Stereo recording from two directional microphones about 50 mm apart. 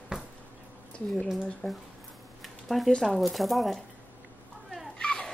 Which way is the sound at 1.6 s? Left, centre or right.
Centre.